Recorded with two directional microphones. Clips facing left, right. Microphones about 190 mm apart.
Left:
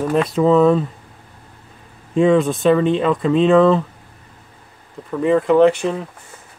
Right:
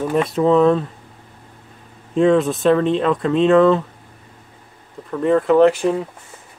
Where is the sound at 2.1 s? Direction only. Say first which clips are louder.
Even; centre (ahead or behind).